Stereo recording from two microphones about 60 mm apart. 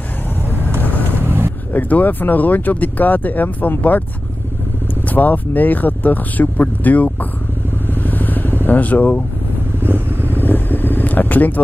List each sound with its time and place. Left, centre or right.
1.2 s vehicle: right
1.7 s speech: left
5.1 s speech: left
8.0 s vehicle: left
8.6 s speech: left
9.8 s vehicle: right
10.4 s speech: left